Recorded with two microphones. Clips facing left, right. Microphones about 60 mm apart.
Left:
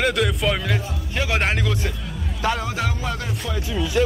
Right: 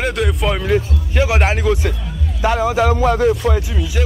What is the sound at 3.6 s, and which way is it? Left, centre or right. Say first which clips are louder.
Speech: left 1 dB; centre.